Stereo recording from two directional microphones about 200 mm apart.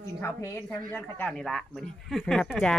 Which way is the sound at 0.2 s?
15° left (ahead or behind).